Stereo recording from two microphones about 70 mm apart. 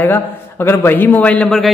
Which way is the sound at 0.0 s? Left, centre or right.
Left.